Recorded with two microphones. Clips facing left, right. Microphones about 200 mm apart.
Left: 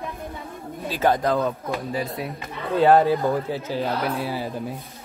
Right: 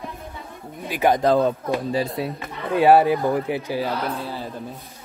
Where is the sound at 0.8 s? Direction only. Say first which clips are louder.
Right 1 dB; 15° right (ahead or behind).